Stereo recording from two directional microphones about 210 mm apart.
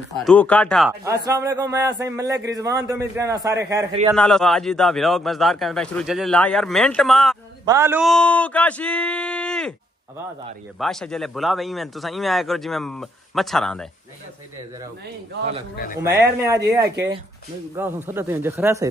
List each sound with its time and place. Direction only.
0.2 s a man's voice: 5° left (ahead or behind)
1.0 s speech: 15° right (ahead or behind)
4.1 s a man's voice: centre (ahead or behind)
7.6 s speech: 15° right (ahead or behind)
8.0 s a man's voice: 5° left (ahead or behind)
10.8 s a man's voice: centre (ahead or behind)
15.7 s a man's voice: 45° left (ahead or behind)
16.0 s speech: 10° right (ahead or behind)